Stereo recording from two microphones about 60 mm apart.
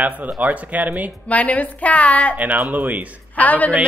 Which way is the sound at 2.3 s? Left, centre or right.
Right.